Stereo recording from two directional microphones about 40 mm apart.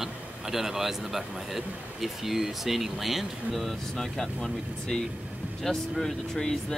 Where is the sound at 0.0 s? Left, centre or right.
Centre.